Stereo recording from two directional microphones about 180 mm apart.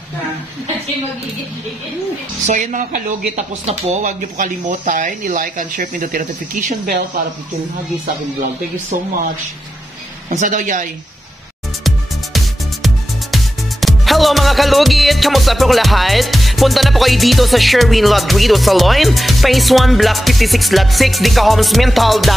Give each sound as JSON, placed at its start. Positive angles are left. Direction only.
{"t": 2.4, "sound": "speech", "side_deg": -40}
{"t": 10.3, "sound": "speech", "side_deg": -45}
{"t": 11.8, "sound": "music", "side_deg": 0}